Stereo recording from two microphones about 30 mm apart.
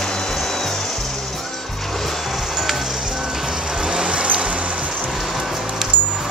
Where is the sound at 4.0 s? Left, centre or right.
Right.